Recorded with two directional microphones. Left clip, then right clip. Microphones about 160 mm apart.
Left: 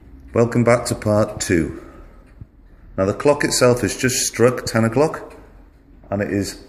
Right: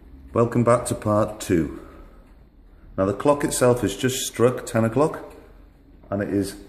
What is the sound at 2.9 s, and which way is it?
A man's voice, 5° left (ahead or behind).